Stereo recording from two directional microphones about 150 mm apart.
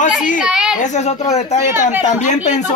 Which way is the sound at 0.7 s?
50° left (ahead or behind).